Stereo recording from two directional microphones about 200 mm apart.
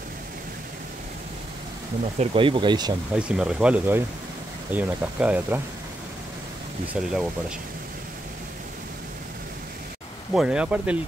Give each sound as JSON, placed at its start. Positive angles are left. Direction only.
{"t": 2.1, "sound": "speech", "side_deg": -25}
{"t": 3.2, "sound": "speech", "side_deg": -5}
{"t": 6.9, "sound": "speech", "side_deg": -5}
{"t": 10.3, "sound": "speech", "side_deg": -5}